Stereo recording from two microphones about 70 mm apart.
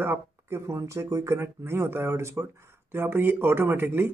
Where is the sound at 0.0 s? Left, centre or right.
Right.